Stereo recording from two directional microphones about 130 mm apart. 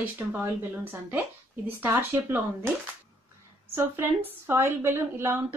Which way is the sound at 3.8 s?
15° right (ahead or behind).